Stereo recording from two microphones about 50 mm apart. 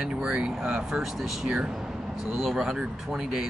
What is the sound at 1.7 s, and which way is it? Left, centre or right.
Vehicle, centre.